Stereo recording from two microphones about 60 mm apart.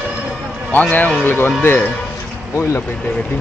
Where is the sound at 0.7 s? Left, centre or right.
Left.